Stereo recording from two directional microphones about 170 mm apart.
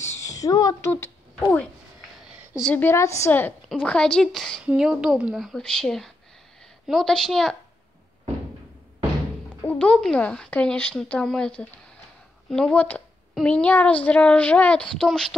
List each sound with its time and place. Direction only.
0.0 s a child's voice: 15° left (ahead or behind)
2.7 s a woman's voice: 15° left (ahead or behind)
9.7 s a woman's voice: 5° left (ahead or behind)